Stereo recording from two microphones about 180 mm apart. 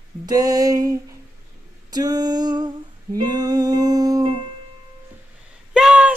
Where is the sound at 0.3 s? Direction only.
20° right (ahead or behind).